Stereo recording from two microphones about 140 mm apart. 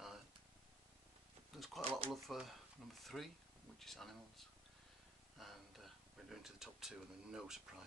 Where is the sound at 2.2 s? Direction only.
Centre (ahead or behind).